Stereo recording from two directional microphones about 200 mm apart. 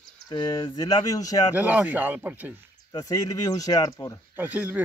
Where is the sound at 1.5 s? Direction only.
10° right (ahead or behind).